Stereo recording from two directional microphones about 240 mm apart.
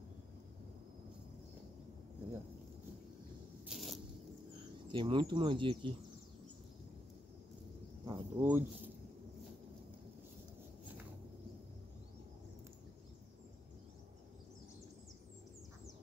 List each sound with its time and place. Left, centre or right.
3.6 s a sound: centre
4.9 s speech: right
8.0 s cricket: centre